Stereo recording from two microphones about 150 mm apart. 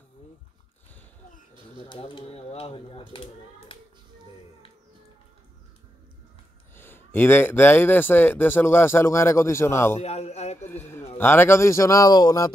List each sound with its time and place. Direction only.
1.9 s speech: 35° left (ahead or behind)
6.7 s speech: 15° left (ahead or behind)
9.9 s speech: 45° left (ahead or behind)
10.6 s speech: 15° left (ahead or behind)